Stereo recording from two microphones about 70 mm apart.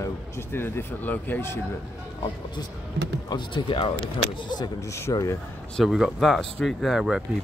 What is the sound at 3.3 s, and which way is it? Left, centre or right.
Speech, left.